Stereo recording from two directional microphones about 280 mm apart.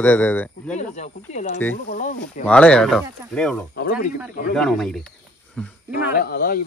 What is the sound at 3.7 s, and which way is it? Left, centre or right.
Speech, left.